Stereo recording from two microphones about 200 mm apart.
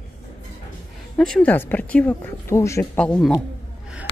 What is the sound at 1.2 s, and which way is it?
Speech, 5° left (ahead or behind).